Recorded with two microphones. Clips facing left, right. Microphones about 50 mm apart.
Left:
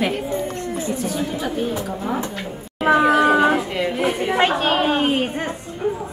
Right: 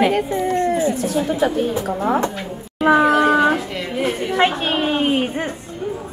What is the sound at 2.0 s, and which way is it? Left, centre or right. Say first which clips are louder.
Speech: right 6 dB; right.